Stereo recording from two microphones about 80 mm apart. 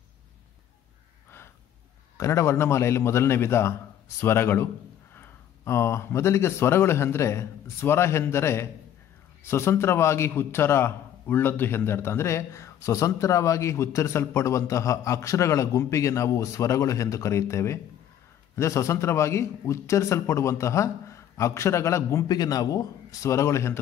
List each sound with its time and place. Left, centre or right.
2.1 s a man's voice: left
22.3 s a man's voice: left